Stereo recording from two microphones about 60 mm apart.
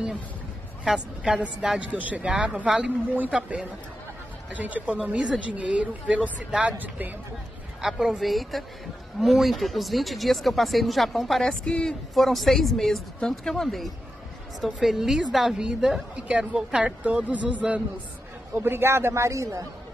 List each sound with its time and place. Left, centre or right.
0.8 s a woman's voice: centre
2.0 s speech: right
4.5 s speech: right
4.9 s speech: centre; by 7.2 s right
7.8 s speech: centre
11.4 s speech: centre
12.1 s a woman's voice: centre
17.0 s speech: right
18.5 s a man's voice: right